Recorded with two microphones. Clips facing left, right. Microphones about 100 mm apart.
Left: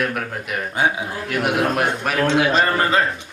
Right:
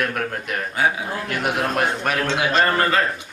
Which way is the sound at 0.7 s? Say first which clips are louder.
Left 1 dB; 20° left (ahead or behind).